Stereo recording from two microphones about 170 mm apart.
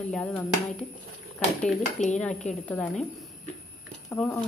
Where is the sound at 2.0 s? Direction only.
40° left (ahead or behind).